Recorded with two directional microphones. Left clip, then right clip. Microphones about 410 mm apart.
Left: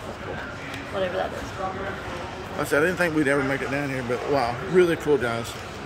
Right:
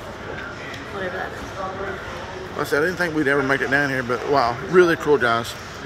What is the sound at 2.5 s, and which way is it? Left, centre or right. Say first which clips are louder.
A man's voice: right 1 dB; centre.